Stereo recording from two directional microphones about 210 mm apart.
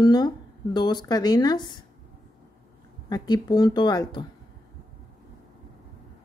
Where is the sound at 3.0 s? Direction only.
20° left (ahead or behind).